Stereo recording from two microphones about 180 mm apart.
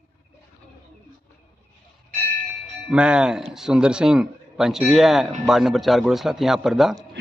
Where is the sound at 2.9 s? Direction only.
5° right (ahead or behind).